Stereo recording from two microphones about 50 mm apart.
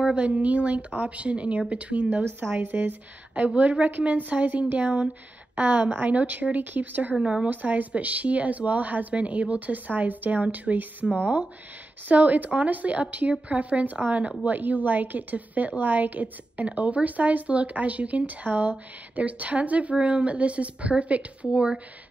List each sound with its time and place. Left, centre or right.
0.0 s a woman's voice: right
7.2 s speech: centre
7.4 s a woman's voice: right